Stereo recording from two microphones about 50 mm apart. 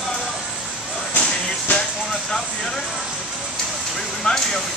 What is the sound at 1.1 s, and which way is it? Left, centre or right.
Music, left.